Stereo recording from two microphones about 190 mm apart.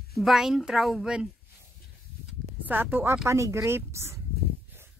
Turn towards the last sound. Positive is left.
turn(degrees=-15)  # may be behind; listen again after turning